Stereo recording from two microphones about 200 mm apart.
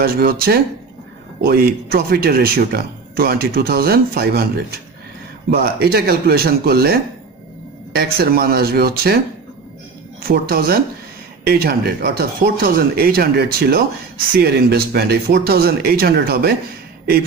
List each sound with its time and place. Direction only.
0.0 s speech: 45° right (ahead or behind)
10.2 s speech: 45° right (ahead or behind)